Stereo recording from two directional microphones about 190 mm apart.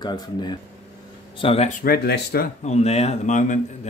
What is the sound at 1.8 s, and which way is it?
Speech, 55° left (ahead or behind).